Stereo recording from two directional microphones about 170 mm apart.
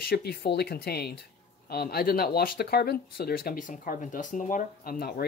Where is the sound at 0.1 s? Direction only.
70° left (ahead or behind).